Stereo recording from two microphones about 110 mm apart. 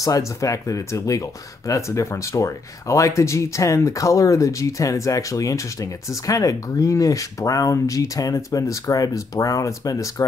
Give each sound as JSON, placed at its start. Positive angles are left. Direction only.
{"t": 0.0, "sound": "speech", "side_deg": 30}